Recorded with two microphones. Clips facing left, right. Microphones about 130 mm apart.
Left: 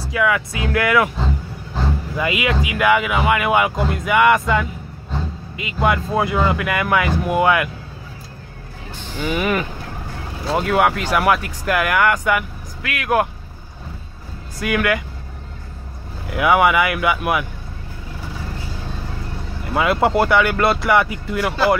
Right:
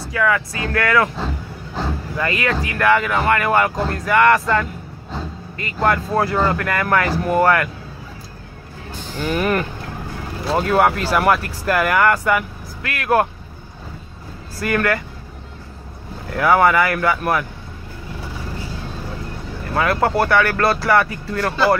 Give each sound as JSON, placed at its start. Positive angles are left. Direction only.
{"t": 0.1, "sound": "speech", "side_deg": 15}
{"t": 2.1, "sound": "speech", "side_deg": 10}
{"t": 9.2, "sound": "speech", "side_deg": 5}
{"t": 14.6, "sound": "speech", "side_deg": 5}
{"t": 16.3, "sound": "speech", "side_deg": 10}
{"t": 19.7, "sound": "speech", "side_deg": 15}